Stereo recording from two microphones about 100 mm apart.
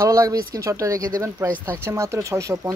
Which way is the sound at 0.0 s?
35° right (ahead or behind).